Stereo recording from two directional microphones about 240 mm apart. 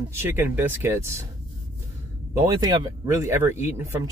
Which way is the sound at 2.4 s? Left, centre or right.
Centre.